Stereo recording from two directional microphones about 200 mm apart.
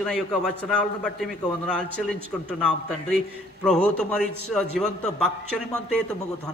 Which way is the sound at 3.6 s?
5° left (ahead or behind).